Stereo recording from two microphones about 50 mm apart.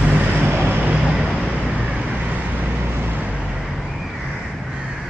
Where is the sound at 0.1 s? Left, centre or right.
Right.